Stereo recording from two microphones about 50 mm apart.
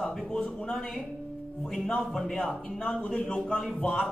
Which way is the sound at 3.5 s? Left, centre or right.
Centre.